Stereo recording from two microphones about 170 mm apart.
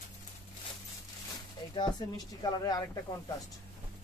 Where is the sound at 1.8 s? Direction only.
25° left (ahead or behind).